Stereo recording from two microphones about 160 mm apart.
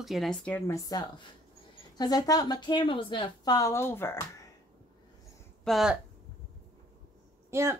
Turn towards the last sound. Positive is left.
turn(degrees=-15)  # may be behind; listen again after turning